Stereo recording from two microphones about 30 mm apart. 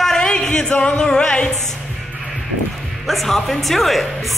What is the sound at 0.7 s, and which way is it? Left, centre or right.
Music, left.